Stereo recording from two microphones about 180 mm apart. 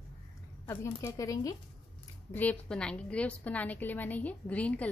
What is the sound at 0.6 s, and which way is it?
A woman's voice, 15° left (ahead or behind).